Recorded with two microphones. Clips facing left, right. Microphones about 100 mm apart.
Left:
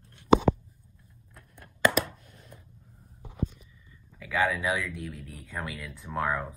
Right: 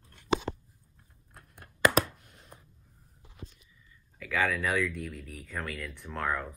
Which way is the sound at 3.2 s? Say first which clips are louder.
Left 15 dB; 55° left (ahead or behind).